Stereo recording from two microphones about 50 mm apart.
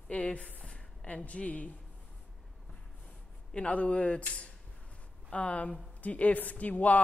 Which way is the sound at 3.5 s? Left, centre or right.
Left.